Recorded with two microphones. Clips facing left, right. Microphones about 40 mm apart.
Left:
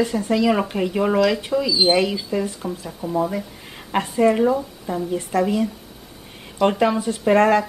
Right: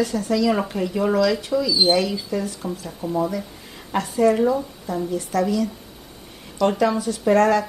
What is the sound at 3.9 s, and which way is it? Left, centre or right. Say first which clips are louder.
A woman's voice: left 1 dB; left.